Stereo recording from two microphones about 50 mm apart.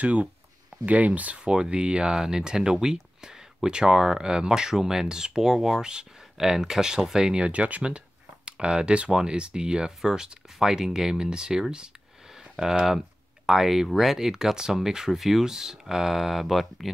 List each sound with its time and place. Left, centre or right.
0.0 s speech: right
1.4 s speech: centre